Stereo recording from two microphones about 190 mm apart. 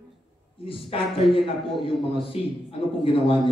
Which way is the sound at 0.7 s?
30° left (ahead or behind).